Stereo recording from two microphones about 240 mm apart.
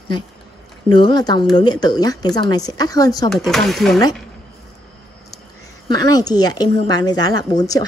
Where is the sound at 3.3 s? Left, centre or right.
Centre.